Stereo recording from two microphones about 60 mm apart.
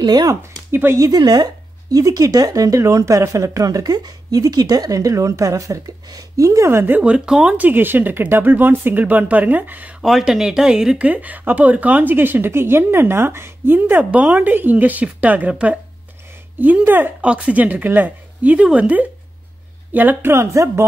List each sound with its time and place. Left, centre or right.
0.4 s speech: right
0.9 s speech: right
7.0 s speech: centre
7.5 s speech: right
10.0 s speech: centre
11.0 s speech: right
13.7 s speech: right
16.8 s speech: right
17.2 s speech: right
20.2 s speech: right